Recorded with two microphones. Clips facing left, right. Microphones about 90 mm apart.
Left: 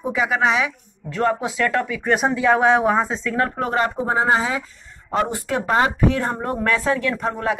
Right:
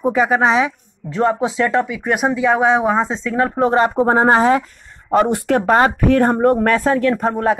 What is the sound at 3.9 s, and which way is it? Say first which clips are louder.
Speech: right 6 dB; 50° right (ahead or behind).